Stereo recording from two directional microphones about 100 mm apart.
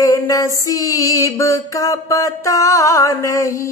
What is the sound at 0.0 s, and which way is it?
Female singing, 35° left (ahead or behind).